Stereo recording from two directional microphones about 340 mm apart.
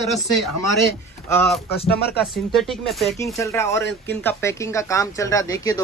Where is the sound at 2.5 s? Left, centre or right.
Centre.